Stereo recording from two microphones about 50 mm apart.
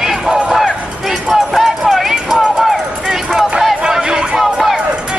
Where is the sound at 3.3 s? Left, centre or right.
Centre.